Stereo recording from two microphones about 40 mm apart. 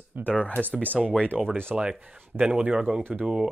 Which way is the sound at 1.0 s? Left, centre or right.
Centre.